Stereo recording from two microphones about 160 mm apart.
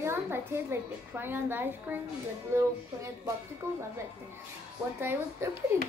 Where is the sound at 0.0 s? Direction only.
15° right (ahead or behind).